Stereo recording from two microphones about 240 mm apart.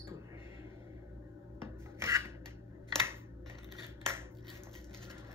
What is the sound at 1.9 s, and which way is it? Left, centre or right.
Scissors, centre.